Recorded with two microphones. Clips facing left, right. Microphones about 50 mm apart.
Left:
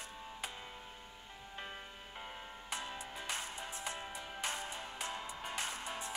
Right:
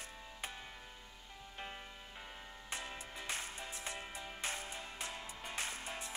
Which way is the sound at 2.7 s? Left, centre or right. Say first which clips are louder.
Left 2 dB; left.